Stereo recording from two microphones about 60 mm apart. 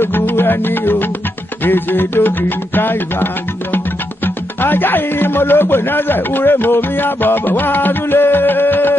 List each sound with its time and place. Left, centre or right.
0.0 s music: left
1.6 s speech: left
4.6 s speech: left